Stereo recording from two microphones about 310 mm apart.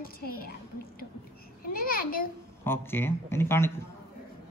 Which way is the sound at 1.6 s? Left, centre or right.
Left.